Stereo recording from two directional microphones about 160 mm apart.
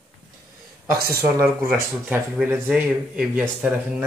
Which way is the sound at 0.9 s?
70° right (ahead or behind).